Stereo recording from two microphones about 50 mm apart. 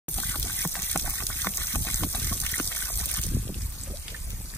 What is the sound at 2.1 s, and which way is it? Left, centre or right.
Water, left.